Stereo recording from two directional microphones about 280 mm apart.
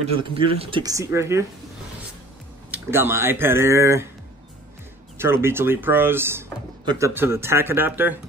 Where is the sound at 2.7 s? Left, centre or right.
Centre.